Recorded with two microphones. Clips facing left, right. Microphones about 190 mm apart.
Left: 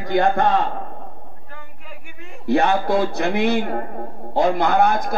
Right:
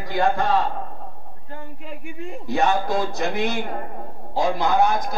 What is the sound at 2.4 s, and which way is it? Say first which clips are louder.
A man's voice: left 4 dB; 60° left (ahead or behind).